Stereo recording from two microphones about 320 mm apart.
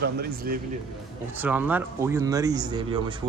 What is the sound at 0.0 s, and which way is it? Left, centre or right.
Speech, right.